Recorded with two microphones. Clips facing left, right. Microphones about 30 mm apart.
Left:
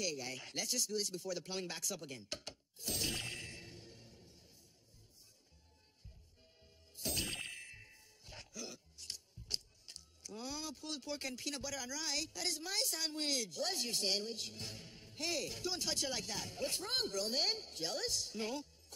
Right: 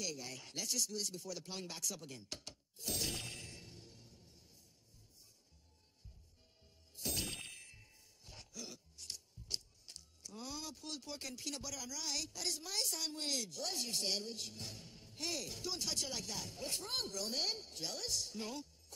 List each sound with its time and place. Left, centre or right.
0.0 s speech: left
2.8 s a sound: centre
7.0 s ding: centre
9.0 s music: left
11.6 s speech: left